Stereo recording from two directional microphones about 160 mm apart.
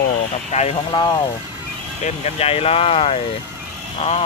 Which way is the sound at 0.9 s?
30° left (ahead or behind).